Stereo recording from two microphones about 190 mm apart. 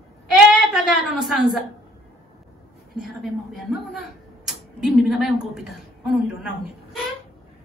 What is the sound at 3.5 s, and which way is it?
A woman's voice, centre (ahead or behind).